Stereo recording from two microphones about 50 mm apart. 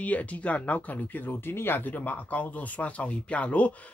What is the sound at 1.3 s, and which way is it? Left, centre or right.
Speech, left.